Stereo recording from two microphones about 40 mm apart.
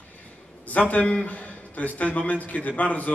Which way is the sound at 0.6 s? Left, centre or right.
Left.